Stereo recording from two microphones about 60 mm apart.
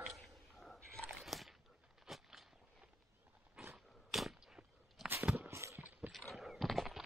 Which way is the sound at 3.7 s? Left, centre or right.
Centre.